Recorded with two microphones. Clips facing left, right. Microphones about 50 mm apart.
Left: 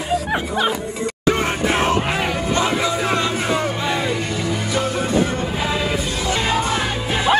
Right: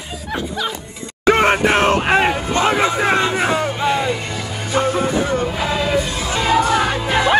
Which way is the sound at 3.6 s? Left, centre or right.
Centre.